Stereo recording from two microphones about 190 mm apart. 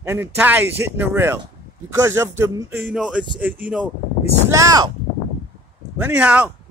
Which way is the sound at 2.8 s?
5° right (ahead or behind).